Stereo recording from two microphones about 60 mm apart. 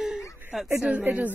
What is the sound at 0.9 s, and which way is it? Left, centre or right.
Speech, right.